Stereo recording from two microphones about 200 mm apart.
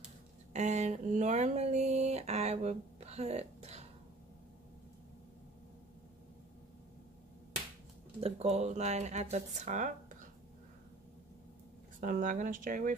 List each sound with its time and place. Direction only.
0.5 s a sound: 35° right (ahead or behind)
8.2 s speech: 30° right (ahead or behind)
12.0 s speech: 40° right (ahead or behind)